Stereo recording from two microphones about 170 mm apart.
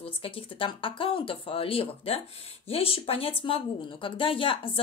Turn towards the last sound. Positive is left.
turn(degrees=30)  # may be behind; listen again after turning